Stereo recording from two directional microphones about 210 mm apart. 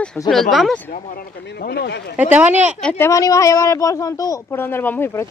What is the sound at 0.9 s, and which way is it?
Speech, 45° left (ahead or behind).